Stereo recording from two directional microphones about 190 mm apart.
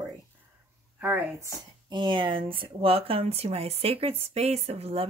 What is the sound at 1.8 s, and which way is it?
Speech, 25° right (ahead or behind).